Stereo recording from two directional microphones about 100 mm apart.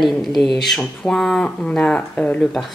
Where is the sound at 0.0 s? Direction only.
Centre (ahead or behind).